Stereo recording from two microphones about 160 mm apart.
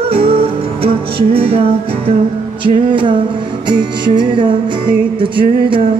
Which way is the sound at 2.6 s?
30° right (ahead or behind).